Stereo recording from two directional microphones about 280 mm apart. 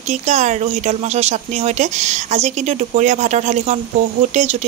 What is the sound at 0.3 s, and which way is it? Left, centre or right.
Speech, right.